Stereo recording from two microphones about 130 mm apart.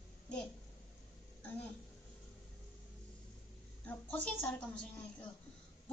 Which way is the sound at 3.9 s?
10° left (ahead or behind).